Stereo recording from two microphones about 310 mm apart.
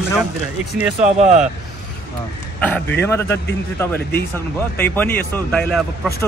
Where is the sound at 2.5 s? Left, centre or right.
Centre.